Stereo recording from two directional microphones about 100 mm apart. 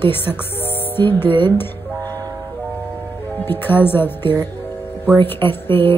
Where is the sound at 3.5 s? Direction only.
20° left (ahead or behind).